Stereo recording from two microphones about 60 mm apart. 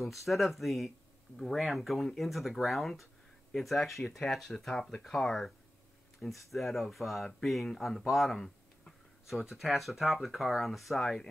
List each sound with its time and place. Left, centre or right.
0.0 s speech: centre